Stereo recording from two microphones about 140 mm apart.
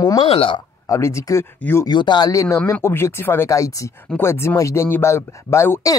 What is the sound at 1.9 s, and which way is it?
Speech, 30° left (ahead or behind).